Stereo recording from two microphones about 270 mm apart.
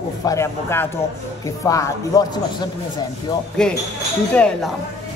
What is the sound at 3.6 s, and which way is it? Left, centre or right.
Speech, centre.